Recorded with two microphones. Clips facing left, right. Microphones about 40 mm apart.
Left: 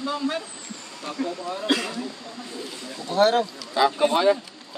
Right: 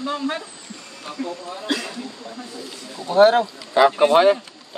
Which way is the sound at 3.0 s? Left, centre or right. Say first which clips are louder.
Right 5 dB; right.